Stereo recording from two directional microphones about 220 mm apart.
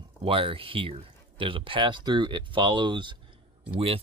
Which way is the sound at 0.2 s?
25° right (ahead or behind).